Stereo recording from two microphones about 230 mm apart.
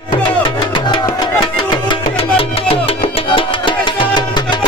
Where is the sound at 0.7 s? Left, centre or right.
Centre.